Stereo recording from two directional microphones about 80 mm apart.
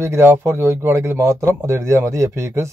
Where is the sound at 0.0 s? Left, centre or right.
Right.